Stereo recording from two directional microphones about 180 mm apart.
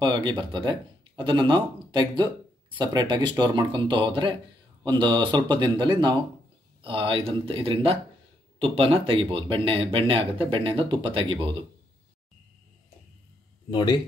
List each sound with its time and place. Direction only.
0.0 s speech: 25° right (ahead or behind)
13.7 s speech: 25° left (ahead or behind)